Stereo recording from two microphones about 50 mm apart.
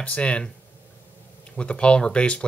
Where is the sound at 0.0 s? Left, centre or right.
Left.